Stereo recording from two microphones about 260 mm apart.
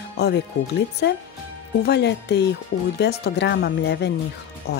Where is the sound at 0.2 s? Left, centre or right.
Left.